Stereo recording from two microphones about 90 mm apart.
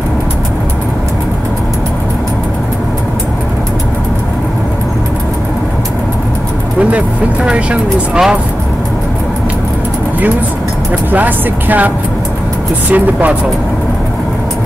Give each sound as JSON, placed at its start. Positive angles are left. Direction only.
{"t": 7.4, "sound": "speech", "side_deg": -10}
{"t": 11.1, "sound": "speech", "side_deg": -20}
{"t": 12.9, "sound": "speech", "side_deg": -20}